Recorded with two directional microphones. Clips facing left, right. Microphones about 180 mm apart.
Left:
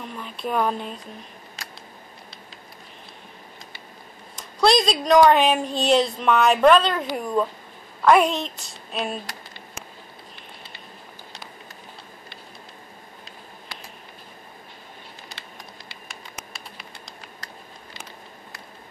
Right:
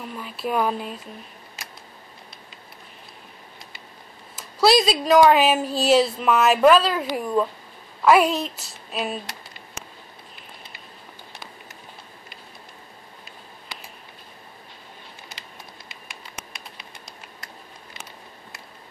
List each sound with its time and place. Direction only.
0.0 s speech: 5° right (ahead or behind)
4.4 s a woman's voice: 5° right (ahead or behind)
9.2 s a sound: 20° right (ahead or behind)